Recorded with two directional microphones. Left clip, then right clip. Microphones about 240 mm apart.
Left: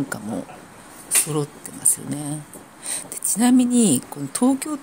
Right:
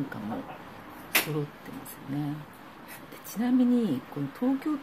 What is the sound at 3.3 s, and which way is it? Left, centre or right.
A woman's voice, left.